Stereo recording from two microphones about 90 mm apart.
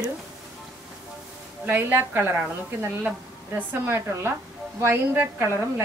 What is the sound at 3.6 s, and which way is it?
A woman's voice, 25° right (ahead or behind).